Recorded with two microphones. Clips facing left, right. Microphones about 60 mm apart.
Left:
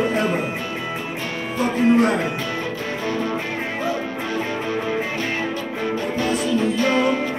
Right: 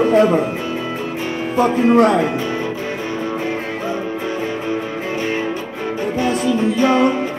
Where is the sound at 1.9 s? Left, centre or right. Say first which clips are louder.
Right 4 dB; right.